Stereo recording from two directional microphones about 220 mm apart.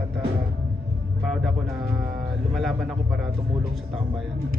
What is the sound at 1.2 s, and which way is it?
Speech, centre (ahead or behind).